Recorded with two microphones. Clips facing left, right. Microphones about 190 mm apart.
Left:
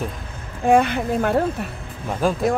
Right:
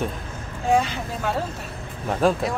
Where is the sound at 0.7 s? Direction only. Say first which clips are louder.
Left 5 dB; 55° left (ahead or behind).